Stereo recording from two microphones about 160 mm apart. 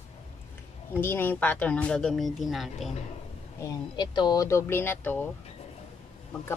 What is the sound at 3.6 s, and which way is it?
Speech, 25° left (ahead or behind).